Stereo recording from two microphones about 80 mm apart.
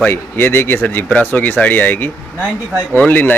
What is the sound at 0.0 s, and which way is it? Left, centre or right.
Speech, left.